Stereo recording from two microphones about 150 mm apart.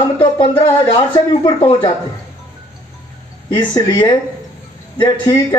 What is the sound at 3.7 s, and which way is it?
Speech, 25° left (ahead or behind).